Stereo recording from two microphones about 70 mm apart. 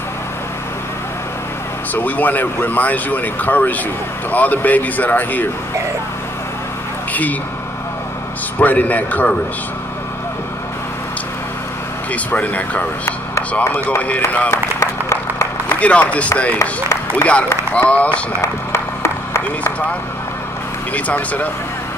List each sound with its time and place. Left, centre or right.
2.0 s speech: left
8.5 s speech: left
12.1 s speech: left
14.5 s a sound: left
15.8 s a man's voice: centre
18.4 s a sound: left
20.9 s speech: left